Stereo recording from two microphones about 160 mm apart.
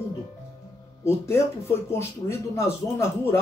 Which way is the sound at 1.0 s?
15° left (ahead or behind).